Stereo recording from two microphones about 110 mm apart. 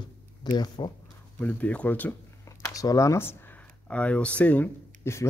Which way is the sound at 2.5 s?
30° left (ahead or behind).